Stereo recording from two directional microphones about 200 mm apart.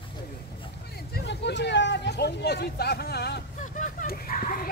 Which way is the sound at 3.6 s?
40° left (ahead or behind).